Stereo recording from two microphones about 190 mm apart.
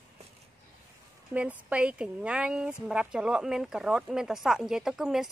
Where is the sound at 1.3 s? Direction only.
5° right (ahead or behind).